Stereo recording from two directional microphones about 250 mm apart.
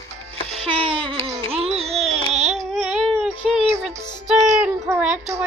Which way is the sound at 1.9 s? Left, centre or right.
Centre.